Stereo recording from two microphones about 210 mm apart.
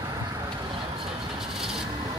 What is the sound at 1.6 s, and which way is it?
Vehicle, centre (ahead or behind).